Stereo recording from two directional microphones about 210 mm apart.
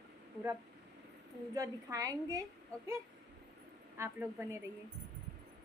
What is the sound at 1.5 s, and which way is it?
Speech, 15° right (ahead or behind).